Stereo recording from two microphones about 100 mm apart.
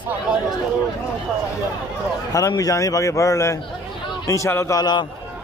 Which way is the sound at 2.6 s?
35° left (ahead or behind).